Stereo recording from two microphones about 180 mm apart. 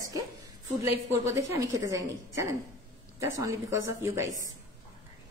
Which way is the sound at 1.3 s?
15° right (ahead or behind).